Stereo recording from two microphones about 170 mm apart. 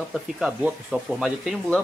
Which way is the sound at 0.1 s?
5° right (ahead or behind).